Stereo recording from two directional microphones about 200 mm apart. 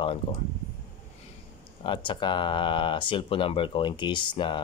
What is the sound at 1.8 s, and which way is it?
Speech, 25° left (ahead or behind).